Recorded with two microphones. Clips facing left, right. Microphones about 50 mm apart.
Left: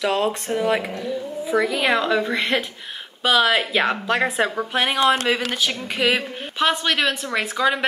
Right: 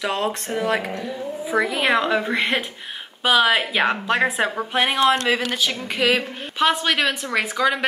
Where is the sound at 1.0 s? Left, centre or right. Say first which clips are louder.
Left 1 dB; centre.